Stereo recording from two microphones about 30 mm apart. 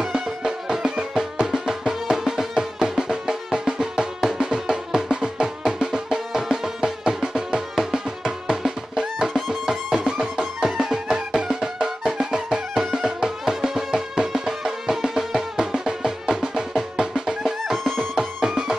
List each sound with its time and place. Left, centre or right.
0.0 s music: centre
9.9 s music: right
18.5 s music: right